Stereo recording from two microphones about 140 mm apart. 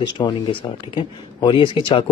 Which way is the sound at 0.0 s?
35° left (ahead or behind).